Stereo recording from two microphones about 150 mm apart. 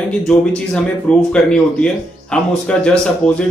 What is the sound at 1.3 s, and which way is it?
Speech, 5° left (ahead or behind).